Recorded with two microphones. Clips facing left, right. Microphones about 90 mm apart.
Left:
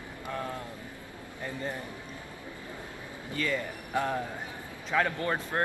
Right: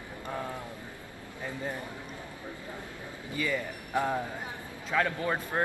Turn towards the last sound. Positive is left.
turn(degrees=-10)  # may be behind; listen again after turning